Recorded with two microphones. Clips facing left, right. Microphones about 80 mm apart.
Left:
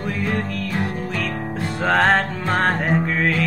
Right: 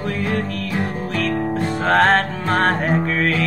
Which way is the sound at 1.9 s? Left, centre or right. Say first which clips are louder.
Right 2 dB; centre.